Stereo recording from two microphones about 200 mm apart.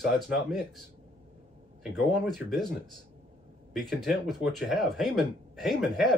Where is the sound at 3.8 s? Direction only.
Centre (ahead or behind).